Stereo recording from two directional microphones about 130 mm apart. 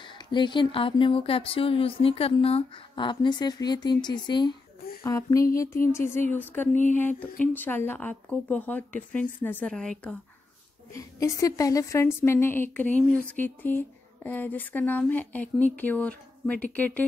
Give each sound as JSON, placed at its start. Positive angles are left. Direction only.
{"t": 0.0, "sound": "speech", "side_deg": 35}
{"t": 5.0, "sound": "a sound", "side_deg": 25}
{"t": 6.5, "sound": "a woman's voice", "side_deg": 15}
{"t": 10.9, "sound": "a woman's voice", "side_deg": 25}